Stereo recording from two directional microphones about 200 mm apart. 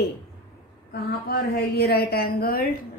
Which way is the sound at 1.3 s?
50° left (ahead or behind).